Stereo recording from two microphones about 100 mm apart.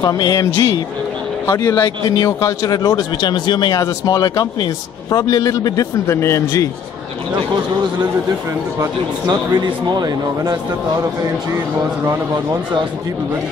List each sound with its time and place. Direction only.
0.0 s a man's voice: 40° left (ahead or behind)
1.5 s a man's voice: 35° left (ahead or behind)
9.3 s a man's voice: 45° right (ahead or behind)